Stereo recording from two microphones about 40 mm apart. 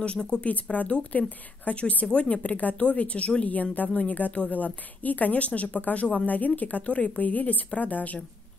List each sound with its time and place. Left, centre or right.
0.0 s speech: left
0.5 s a woman's voice: left
3.7 s a woman's voice: left